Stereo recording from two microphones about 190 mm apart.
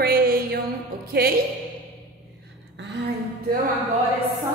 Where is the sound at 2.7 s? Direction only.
65° right (ahead or behind).